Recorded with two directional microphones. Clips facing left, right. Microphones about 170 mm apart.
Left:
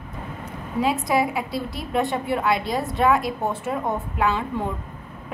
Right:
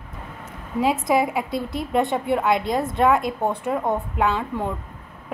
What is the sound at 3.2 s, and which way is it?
Speech, 20° right (ahead or behind).